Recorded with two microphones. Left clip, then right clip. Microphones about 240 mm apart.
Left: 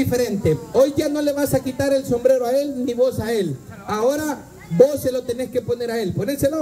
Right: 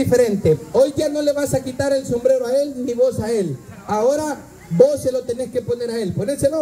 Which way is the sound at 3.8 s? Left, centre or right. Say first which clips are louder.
Right 2 dB; left.